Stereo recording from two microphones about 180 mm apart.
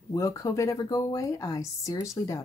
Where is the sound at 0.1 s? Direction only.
15° left (ahead or behind).